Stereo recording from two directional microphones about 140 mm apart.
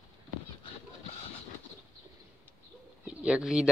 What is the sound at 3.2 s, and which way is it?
Speech, 5° right (ahead or behind).